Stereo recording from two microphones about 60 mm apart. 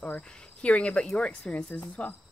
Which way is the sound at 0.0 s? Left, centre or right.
Left.